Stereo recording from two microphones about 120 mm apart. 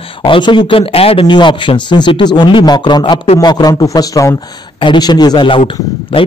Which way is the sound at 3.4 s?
35° left (ahead or behind).